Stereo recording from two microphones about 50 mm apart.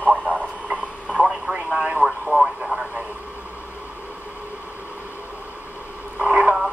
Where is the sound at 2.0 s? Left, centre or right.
Centre.